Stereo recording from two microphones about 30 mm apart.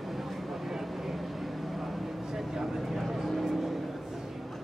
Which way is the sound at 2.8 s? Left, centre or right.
Centre.